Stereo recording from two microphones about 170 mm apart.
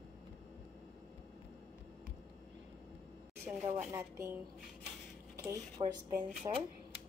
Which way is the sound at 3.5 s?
10° right (ahead or behind).